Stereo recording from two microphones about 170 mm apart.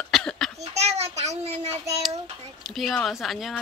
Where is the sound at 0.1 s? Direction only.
5° left (ahead or behind).